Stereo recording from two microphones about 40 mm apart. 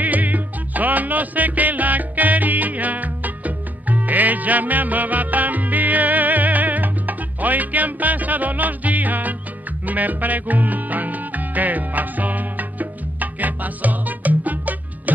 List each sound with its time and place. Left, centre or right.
0.0 s music: right